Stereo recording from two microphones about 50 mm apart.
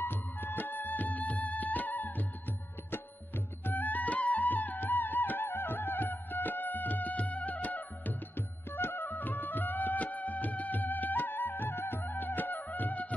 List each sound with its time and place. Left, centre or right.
0.0 s music: left